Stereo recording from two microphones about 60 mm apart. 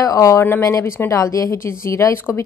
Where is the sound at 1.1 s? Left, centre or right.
Left.